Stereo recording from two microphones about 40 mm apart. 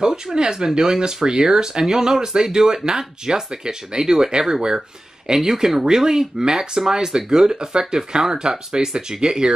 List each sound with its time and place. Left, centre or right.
0.0 s speech: centre